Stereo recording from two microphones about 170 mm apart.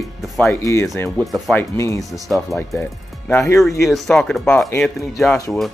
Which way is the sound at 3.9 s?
Centre (ahead or behind).